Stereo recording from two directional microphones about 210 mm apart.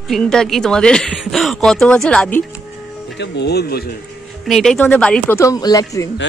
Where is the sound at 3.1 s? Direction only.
55° left (ahead or behind).